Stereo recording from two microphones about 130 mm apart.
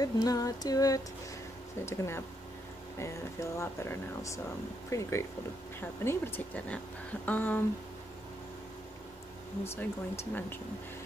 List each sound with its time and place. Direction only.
0.0 s speech: 30° left (ahead or behind); by 7.6 s 15° left (ahead or behind)
9.7 s speech: 15° left (ahead or behind)